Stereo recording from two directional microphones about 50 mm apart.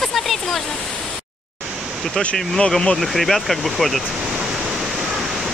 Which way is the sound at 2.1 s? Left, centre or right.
Centre.